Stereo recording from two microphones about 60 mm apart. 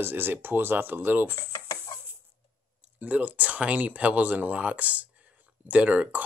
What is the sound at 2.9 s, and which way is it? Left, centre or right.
Speech, right.